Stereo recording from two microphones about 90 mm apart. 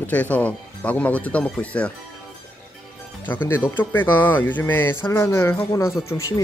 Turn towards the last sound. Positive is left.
turn(degrees=35)  # may be behind; listen again after turning